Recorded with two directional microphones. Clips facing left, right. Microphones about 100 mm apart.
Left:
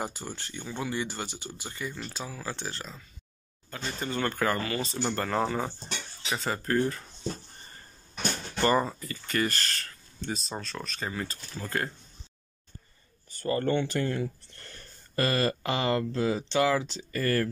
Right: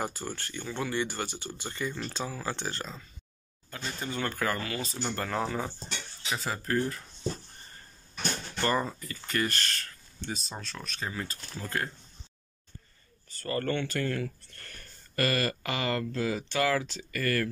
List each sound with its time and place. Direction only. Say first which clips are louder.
0.0 s speech: right 1 dB; 15° left (ahead or behind); by 7.0 s centre (ahead or behind)
8.5 s speech: left 4 dB; 5° left (ahead or behind)
13.3 s speech: left 4 dB; 20° left (ahead or behind)